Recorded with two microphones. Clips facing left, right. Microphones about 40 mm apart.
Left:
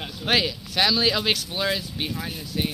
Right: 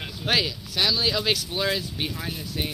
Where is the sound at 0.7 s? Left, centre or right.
Left.